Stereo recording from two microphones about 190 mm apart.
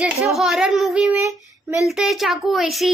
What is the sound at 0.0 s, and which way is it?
A child's voice, 5° right (ahead or behind).